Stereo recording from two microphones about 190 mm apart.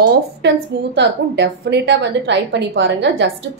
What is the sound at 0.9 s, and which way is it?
A woman's voice, 65° right (ahead or behind).